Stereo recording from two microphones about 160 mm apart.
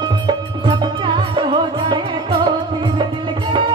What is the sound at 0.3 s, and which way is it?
Music, 30° right (ahead or behind).